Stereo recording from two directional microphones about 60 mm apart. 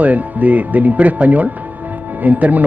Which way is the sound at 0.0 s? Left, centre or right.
Right.